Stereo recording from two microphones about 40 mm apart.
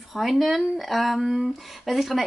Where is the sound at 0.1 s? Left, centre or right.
Centre.